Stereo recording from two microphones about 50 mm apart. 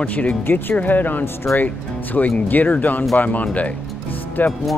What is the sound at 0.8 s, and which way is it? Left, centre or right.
Speech, left.